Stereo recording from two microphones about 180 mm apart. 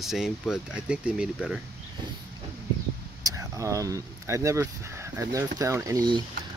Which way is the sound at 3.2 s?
20° right (ahead or behind).